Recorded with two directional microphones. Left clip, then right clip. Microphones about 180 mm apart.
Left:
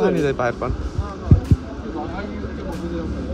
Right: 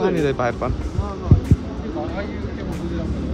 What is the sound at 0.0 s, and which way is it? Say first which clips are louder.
Speech: left 1 dB; 10° right (ahead or behind).